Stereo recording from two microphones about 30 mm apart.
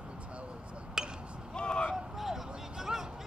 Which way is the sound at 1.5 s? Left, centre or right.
Left.